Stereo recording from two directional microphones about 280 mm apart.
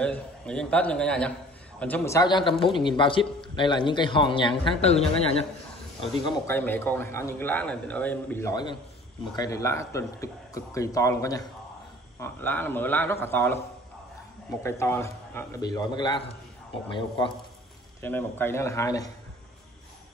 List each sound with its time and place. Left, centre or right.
0.0 s a man's voice: centre; by 5.4 s left
6.2 s a man's voice: centre
14.6 s a man's voice: centre
18.0 s a man's voice: centre